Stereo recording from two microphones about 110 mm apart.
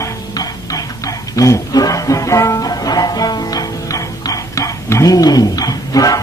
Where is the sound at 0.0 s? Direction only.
35° left (ahead or behind).